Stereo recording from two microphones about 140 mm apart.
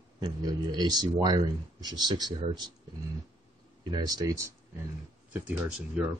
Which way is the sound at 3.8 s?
30° right (ahead or behind).